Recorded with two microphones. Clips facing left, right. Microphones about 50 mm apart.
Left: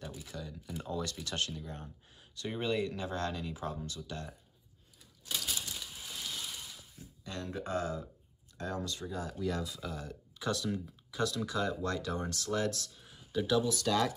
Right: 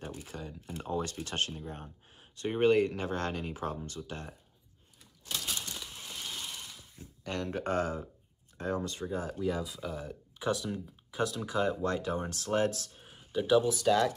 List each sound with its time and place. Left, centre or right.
0.0 s a sound: right
0.8 s speech: right
7.2 s speech: right
8.5 s speech: right
9.3 s speech: centre
11.1 s speech: right
13.3 s speech: centre